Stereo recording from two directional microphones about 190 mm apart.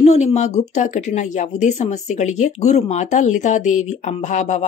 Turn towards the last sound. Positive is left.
turn(degrees=40)  # may be behind; listen again after turning